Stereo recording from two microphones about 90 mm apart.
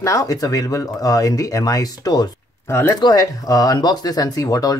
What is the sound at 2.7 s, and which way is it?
Speech, 25° left (ahead or behind).